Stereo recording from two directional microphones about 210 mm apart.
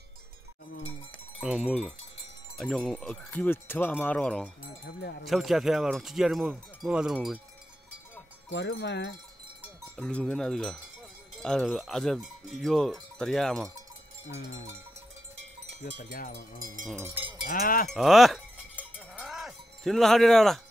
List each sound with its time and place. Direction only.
1.4 s cowbell: 5° right (ahead or behind)
4.8 s cowbell: 50° left (ahead or behind)
5.2 s cowbell: centre (ahead or behind)
8.5 s speech: 55° left (ahead or behind)
9.9 s cowbell: 5° left (ahead or behind)
15.8 s cowbell: 40° left (ahead or behind)
16.9 s cowbell: 15° right (ahead or behind)
17.5 s cowbell: 40° left (ahead or behind)
17.8 s cowbell: centre (ahead or behind)
19.1 s livestock: centre (ahead or behind)